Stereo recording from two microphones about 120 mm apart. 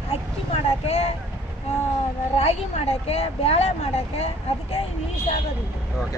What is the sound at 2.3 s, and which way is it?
Speech, 55° left (ahead or behind).